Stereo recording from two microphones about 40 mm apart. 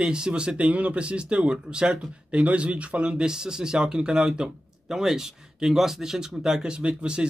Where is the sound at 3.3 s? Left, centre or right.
Centre.